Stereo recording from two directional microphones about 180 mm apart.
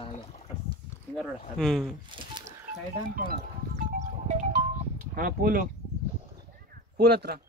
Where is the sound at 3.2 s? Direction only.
55° right (ahead or behind).